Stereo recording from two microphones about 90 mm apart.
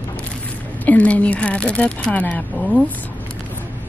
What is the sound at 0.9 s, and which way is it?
Speech, 15° left (ahead or behind).